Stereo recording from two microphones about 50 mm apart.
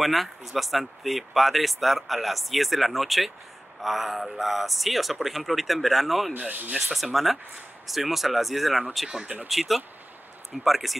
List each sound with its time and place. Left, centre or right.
0.0 s speech: centre
6.3 s speech: right
6.9 s speech: centre